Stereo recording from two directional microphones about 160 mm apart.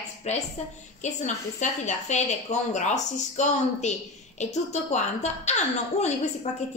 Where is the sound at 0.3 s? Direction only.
45° left (ahead or behind).